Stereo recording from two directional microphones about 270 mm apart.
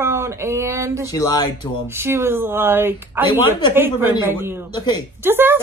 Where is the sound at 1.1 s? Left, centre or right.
Centre.